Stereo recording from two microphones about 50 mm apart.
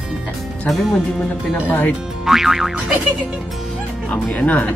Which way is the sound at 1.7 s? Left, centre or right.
Left.